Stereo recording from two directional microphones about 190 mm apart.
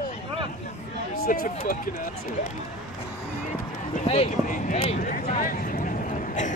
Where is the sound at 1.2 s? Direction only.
50° left (ahead or behind).